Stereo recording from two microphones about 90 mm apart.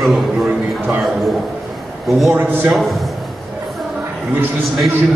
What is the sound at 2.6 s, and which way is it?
Speech, centre (ahead or behind).